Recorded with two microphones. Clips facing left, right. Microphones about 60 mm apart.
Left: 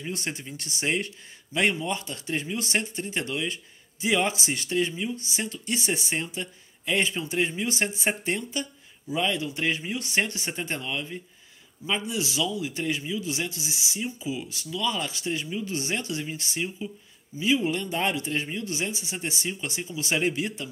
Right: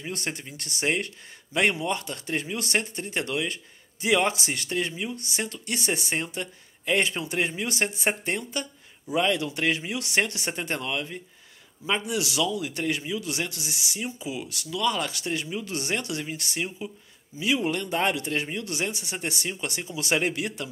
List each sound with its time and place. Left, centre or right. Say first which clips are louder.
0.1 s speech: right 1 dB; right
9.1 s speech: right 3 dB; right